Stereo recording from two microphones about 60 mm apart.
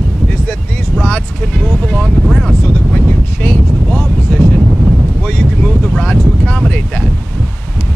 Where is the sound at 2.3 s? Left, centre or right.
Centre.